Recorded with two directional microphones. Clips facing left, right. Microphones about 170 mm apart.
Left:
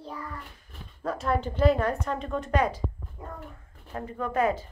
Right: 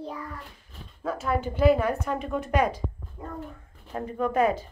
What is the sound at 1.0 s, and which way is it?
A woman's voice, 5° right (ahead or behind).